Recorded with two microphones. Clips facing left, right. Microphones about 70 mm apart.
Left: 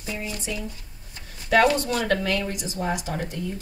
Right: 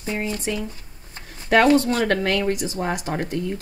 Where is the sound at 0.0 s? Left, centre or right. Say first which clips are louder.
Right 6 dB; right.